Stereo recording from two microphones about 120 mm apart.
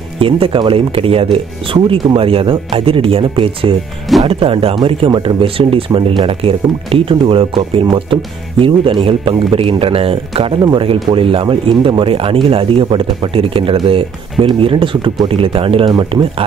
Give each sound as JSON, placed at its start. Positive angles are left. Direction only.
{"t": 0.2, "sound": "speech", "side_deg": -50}